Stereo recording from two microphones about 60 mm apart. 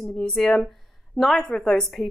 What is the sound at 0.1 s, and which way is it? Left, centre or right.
Speech, centre.